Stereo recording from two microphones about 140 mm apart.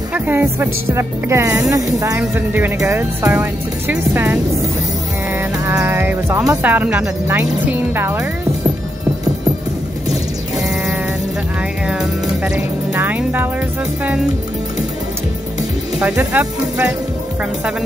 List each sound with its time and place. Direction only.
0.1 s speech: 15° right (ahead or behind)
5.7 s speech: 15° right (ahead or behind)
11.9 s speech: 5° right (ahead or behind)
16.0 s speech: 10° right (ahead or behind)